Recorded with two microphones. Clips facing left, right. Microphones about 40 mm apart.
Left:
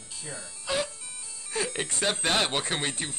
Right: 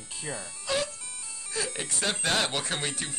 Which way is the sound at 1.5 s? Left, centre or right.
Left.